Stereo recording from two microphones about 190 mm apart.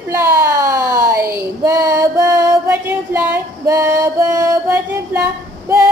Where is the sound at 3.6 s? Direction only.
15° right (ahead or behind).